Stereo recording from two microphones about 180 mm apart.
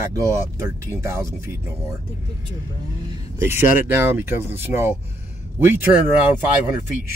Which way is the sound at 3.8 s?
10° right (ahead or behind).